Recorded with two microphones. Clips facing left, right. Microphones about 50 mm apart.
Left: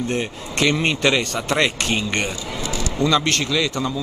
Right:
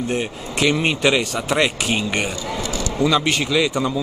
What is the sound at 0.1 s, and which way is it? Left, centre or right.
Speech, centre.